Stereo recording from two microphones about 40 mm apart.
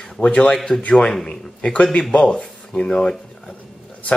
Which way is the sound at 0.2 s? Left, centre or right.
Left.